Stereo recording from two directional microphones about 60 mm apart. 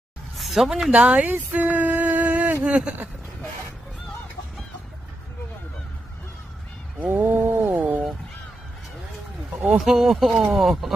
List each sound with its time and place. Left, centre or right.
0.4 s speech: centre
0.9 s speech: right
1.3 s a sound: right
2.6 s speech: centre
7.0 s a sound: right
9.6 s speech: centre